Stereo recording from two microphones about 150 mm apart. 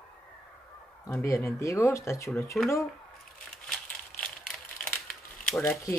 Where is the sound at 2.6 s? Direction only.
Centre (ahead or behind).